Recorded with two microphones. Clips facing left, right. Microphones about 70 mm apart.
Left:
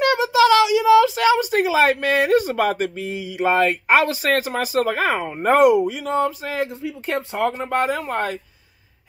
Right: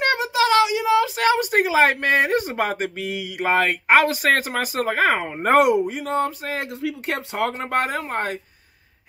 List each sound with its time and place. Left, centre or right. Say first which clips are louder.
0.0 s a sound: left 4 dB; right
3.0 s speech: left 2 dB; right
3.4 s speech: left 1 dB; right
6.8 s speech: left 1 dB; right